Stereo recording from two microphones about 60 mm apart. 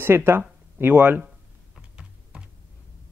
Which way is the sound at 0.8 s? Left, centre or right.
Right.